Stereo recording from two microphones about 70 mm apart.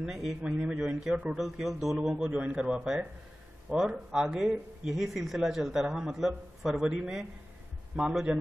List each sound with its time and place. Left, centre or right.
0.0 s a man's voice: centre